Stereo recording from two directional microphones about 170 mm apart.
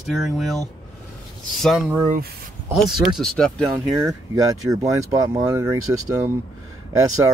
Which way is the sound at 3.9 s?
15° right (ahead or behind).